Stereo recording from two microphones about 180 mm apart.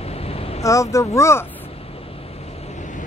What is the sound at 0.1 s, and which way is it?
Vehicle, 35° left (ahead or behind).